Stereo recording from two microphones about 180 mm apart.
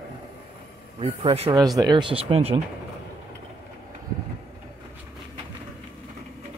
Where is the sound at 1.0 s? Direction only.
30° right (ahead or behind).